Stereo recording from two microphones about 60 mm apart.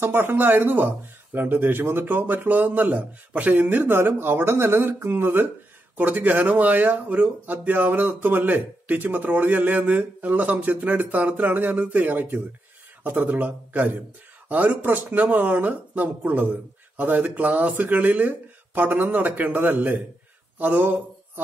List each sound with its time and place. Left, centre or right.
0.0 s speech: right